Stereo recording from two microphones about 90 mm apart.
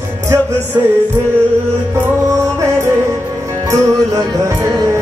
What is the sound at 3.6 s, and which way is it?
Music, 40° right (ahead or behind).